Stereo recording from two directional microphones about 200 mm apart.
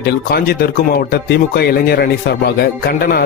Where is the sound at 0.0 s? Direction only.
50° left (ahead or behind).